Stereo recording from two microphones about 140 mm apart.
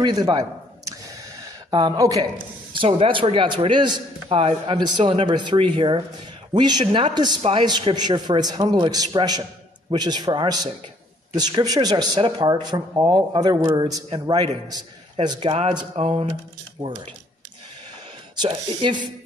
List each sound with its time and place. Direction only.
0.0 s a sound: 30° right (ahead or behind)
1.7 s speech: 30° right (ahead or behind)
2.8 s a man's voice: 40° right (ahead or behind)
16.8 s a man's voice: 40° right (ahead or behind)
18.5 s a man's voice: 35° right (ahead or behind)